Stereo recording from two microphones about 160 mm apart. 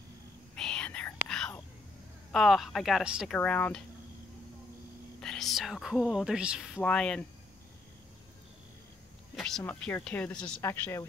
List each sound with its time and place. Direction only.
0.6 s whispering: 5° left (ahead or behind)
2.3 s speech: centre (ahead or behind)
3.3 s speech: 10° left (ahead or behind)
5.2 s speech: 5° left (ahead or behind)
6.8 s speech: 5° left (ahead or behind)
9.3 s speech: centre (ahead or behind)